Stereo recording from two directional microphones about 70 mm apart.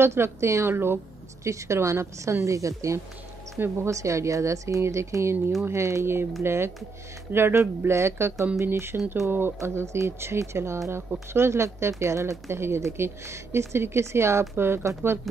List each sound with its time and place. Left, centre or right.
0.0 s speech: right
1.4 s speech: right
3.5 s speech: right
3.9 s speech: right